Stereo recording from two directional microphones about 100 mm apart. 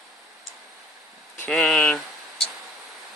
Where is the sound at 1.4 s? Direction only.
10° left (ahead or behind).